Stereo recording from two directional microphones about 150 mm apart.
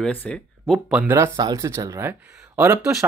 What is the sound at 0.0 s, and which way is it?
Speech, 10° left (ahead or behind).